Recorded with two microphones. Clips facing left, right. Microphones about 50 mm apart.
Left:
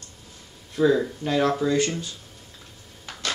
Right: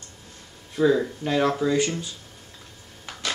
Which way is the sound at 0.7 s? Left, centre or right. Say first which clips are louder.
Even; centre.